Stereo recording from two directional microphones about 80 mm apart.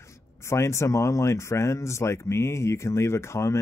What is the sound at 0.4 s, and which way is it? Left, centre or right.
Speech, left.